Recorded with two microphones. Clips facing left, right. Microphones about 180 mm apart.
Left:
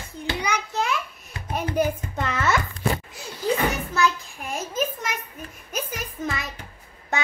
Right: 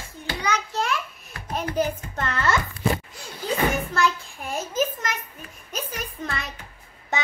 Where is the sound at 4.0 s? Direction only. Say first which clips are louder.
Left 1 dB; centre (ahead or behind).